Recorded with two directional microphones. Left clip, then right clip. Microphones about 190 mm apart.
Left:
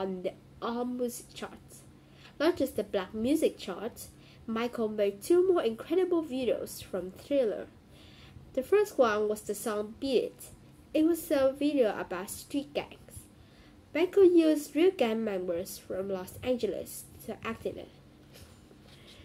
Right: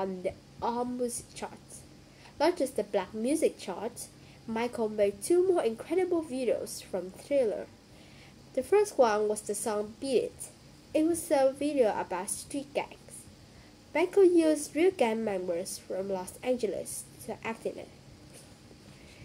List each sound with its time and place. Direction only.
0.0 s a woman's voice: 5° left (ahead or behind)
2.3 s a woman's voice: 5° left (ahead or behind)